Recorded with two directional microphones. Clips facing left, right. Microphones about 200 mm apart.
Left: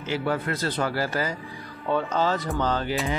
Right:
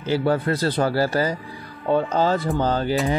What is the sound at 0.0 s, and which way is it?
Speech, 35° right (ahead or behind).